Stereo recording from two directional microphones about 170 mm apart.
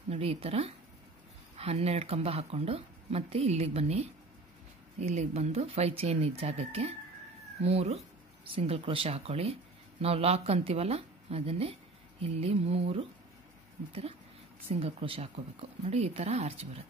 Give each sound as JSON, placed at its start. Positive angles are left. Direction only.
{"t": 0.1, "sound": "speech", "side_deg": -35}
{"t": 14.7, "sound": "speech", "side_deg": -35}